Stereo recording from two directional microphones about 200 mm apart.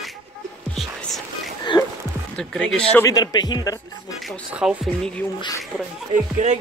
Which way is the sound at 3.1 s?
20° left (ahead or behind).